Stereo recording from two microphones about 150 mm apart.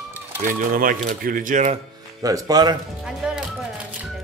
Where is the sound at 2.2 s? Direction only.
25° right (ahead or behind).